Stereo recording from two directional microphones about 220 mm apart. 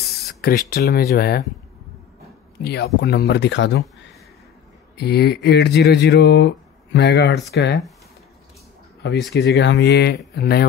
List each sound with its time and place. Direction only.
0.3 s speech: 45° left (ahead or behind)
2.6 s speech: 50° left (ahead or behind)
4.9 s speech: 50° left (ahead or behind)
9.3 s speech: 50° left (ahead or behind)